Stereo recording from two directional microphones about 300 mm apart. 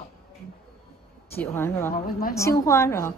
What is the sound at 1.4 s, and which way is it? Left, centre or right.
A woman's voice, centre.